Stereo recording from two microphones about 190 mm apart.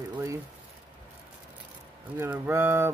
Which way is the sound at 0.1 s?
15° right (ahead or behind).